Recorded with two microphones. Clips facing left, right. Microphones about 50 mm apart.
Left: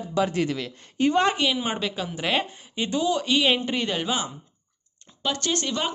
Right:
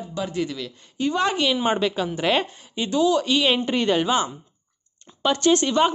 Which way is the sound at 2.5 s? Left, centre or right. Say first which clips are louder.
Right 2 dB; left.